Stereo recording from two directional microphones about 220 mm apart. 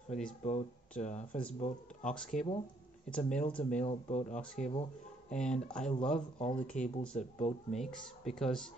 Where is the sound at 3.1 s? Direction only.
5° left (ahead or behind).